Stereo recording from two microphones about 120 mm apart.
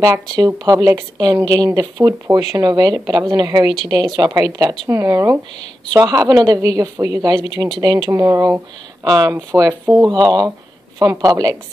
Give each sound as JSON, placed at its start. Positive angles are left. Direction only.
{"t": 0.0, "sound": "a woman's voice", "side_deg": -30}